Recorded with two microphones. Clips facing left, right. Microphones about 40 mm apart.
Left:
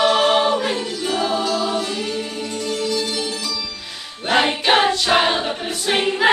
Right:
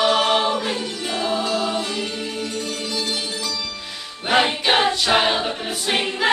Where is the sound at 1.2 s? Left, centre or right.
Centre.